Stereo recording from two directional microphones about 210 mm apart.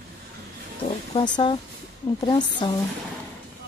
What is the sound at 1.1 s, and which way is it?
Speech, 20° left (ahead or behind).